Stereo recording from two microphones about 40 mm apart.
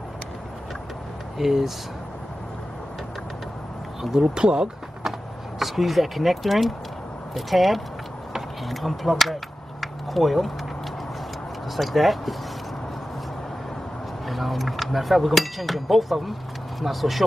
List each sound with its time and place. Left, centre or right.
1.4 s speech: centre
4.0 s speech: centre
5.6 s speech: centre
8.3 s a sound: centre
11.7 s speech: centre
14.2 s speech: centre